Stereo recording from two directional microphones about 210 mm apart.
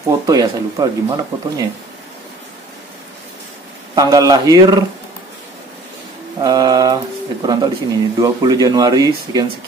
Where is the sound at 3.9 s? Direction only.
15° right (ahead or behind).